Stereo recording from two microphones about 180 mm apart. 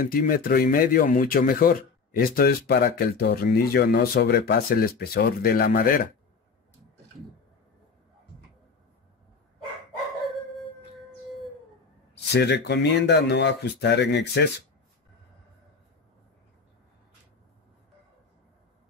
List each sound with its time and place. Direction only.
0.0 s speech: 50° left (ahead or behind)
12.3 s speech: 70° left (ahead or behind)